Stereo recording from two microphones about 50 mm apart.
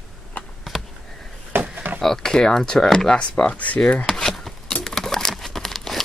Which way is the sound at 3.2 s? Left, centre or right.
Left.